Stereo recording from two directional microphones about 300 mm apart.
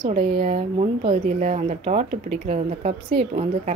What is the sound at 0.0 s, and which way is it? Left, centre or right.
Speech, centre.